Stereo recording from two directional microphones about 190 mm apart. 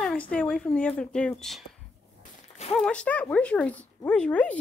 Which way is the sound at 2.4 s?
35° left (ahead or behind).